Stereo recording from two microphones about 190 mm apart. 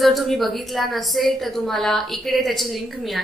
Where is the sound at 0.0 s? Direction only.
Centre (ahead or behind).